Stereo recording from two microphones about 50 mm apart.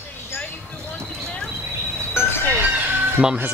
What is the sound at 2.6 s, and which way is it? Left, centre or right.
Music, right.